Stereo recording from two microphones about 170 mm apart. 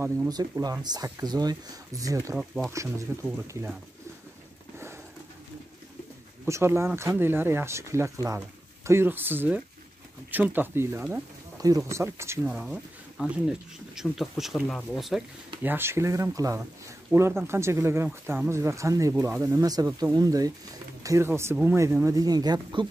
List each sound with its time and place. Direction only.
0.3 s speech: 25° right (ahead or behind)
2.3 s speech: 5° right (ahead or behind)
6.4 s speech: 15° right (ahead or behind)
12.4 s speech: 5° right (ahead or behind)
15.6 s speech: 15° right (ahead or behind)